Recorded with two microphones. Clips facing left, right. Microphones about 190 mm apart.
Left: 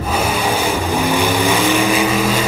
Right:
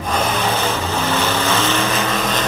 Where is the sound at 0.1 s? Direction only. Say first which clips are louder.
Left 1 dB; 10° left (ahead or behind).